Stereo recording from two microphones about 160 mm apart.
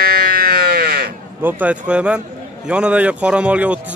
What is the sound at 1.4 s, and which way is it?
A man's voice, 10° right (ahead or behind).